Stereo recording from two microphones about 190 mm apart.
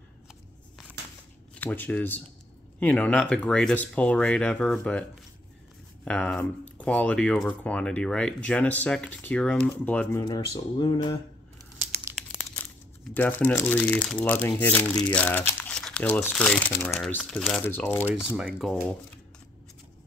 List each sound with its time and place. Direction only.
1.5 s speech: 10° left (ahead or behind)
6.0 s speech: 5° left (ahead or behind)
10.2 s speech: 20° left (ahead or behind)
13.1 s speech: 10° left (ahead or behind)
18.0 s speech: 5° right (ahead or behind)